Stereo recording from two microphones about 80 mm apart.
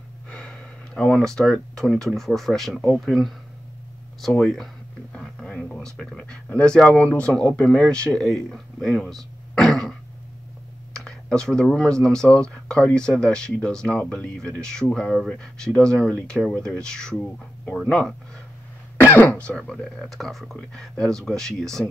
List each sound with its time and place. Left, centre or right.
0.3 s speech: centre
4.4 s speech: centre
5.1 s music: centre
5.9 s speech: centre
11.0 s computer keyboard: centre
11.7 s speech: centre
19.0 s speech: left; by 21.8 s centre